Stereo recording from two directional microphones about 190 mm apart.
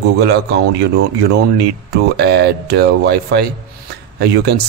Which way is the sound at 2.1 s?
55° right (ahead or behind).